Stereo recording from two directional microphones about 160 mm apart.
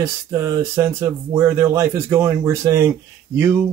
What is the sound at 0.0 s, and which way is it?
Speech, 20° right (ahead or behind).